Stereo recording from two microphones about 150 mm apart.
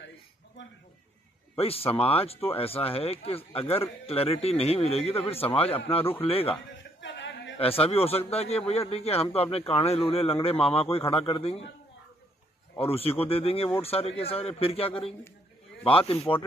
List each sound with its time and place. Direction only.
1.6 s speech: 40° left (ahead or behind)
7.5 s speech: 40° left (ahead or behind)
12.7 s speech: 40° left (ahead or behind)